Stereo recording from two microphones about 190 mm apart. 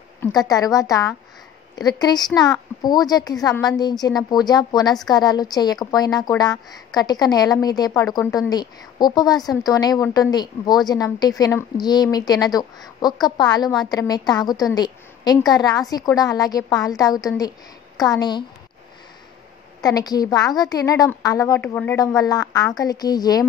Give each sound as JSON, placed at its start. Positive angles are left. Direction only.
{"t": 0.2, "sound": "a woman's voice", "side_deg": 20}
{"t": 19.8, "sound": "a woman's voice", "side_deg": 20}